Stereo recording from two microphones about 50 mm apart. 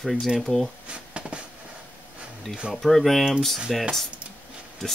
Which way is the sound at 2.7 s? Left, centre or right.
Centre.